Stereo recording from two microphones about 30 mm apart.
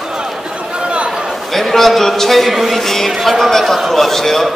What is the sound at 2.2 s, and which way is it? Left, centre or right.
A man's voice, centre.